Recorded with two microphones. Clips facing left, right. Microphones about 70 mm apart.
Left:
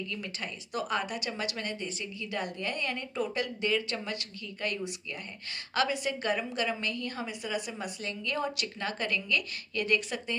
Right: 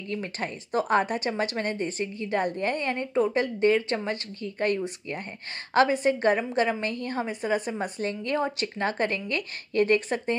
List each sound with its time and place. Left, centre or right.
0.1 s speech: right